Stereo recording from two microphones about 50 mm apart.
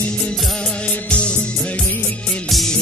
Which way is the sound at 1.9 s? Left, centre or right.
Left.